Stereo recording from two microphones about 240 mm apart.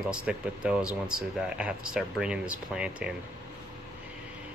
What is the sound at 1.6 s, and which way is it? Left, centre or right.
Speech, centre.